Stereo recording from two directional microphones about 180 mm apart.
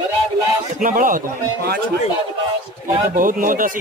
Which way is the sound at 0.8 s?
50° right (ahead or behind).